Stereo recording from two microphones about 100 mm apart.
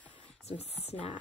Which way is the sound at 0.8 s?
85° left.